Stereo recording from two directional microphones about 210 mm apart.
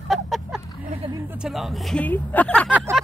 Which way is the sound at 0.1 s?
Centre (ahead or behind).